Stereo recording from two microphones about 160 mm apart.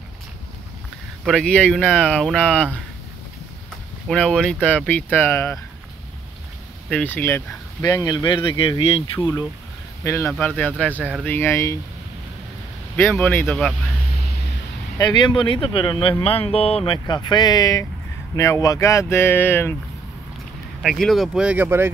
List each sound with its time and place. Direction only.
1.2 s speech: 5° left (ahead or behind)
4.1 s speech: 5° left (ahead or behind)
6.9 s speech: 10° left (ahead or behind)
7.8 s speech: 25° left (ahead or behind)
10.0 s speech: 15° left (ahead or behind)
12.9 s speech: 10° left (ahead or behind)
15.0 s speech: 30° left (ahead or behind); by 19.8 s 15° left (ahead or behind)
20.8 s speech: centre (ahead or behind); by 21.9 s 15° right (ahead or behind)